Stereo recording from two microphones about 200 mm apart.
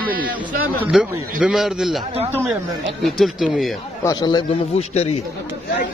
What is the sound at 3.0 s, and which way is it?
Speech, centre (ahead or behind).